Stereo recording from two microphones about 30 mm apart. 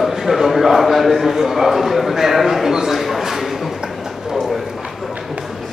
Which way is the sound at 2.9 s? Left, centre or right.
Centre.